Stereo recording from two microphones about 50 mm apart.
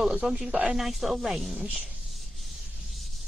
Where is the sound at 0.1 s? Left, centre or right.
Right.